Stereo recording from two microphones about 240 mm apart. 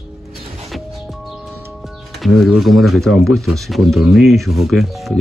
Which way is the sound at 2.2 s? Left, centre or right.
Centre.